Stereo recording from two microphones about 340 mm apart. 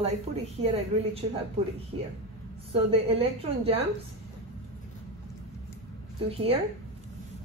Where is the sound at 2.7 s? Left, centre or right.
Centre.